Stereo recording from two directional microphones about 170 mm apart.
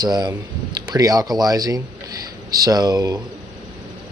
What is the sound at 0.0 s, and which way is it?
Speech, 25° right (ahead or behind).